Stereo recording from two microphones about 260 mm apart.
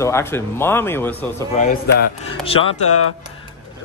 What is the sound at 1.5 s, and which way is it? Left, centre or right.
Speech, left.